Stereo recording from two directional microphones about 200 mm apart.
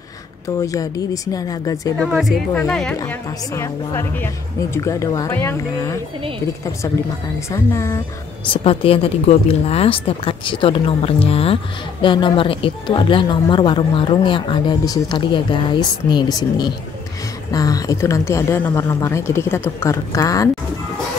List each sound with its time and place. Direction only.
0.6 s a woman's voice: 15° left (ahead or behind)
2.0 s speech: centre (ahead or behind)
3.0 s a woman's voice: 15° left (ahead or behind)
7.3 s a woman's voice: 15° left (ahead or behind)
8.6 s a woman's voice: 30° left (ahead or behind)